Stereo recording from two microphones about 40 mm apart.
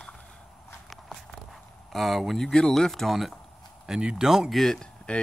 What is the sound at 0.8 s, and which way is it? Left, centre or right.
Walk, centre.